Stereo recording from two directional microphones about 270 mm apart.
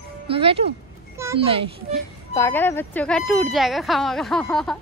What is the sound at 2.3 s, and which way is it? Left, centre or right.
Speech, centre.